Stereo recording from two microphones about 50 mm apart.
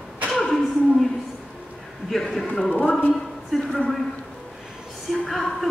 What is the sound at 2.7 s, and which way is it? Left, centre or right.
Speech, left.